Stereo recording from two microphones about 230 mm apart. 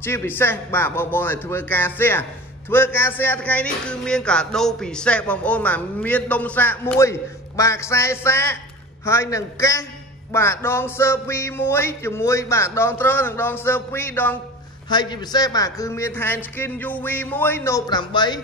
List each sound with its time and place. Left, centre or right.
0.0 s speech: centre
14.9 s speech: centre